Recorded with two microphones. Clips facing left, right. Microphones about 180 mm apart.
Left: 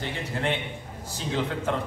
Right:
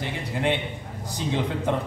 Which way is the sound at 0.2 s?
15° right (ahead or behind).